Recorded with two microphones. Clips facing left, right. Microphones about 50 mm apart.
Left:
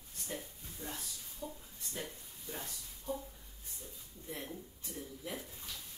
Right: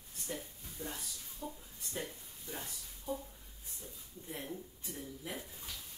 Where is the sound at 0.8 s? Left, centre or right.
Centre.